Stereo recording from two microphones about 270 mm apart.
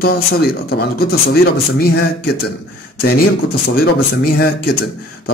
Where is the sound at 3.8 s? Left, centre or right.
Left.